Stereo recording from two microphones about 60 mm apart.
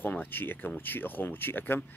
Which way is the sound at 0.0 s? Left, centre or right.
Left.